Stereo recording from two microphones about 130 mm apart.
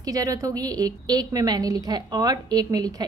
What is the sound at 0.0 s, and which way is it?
A woman's voice, 25° right (ahead or behind).